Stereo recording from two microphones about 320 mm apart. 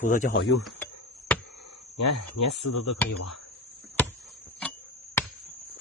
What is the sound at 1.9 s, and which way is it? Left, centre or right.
Speech, left.